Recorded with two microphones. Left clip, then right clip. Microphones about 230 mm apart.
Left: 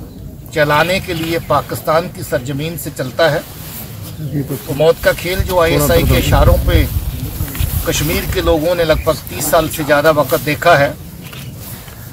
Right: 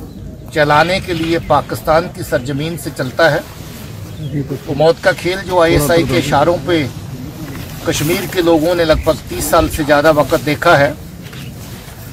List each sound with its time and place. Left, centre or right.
0.6 s speech: centre
4.7 s speech: centre